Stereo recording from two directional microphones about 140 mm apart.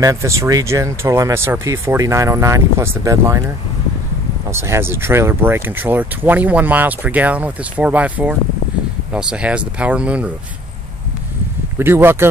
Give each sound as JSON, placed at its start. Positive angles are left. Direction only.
{"t": 0.0, "sound": "speech", "side_deg": -20}
{"t": 4.5, "sound": "speech", "side_deg": -20}
{"t": 11.8, "sound": "speech", "side_deg": -15}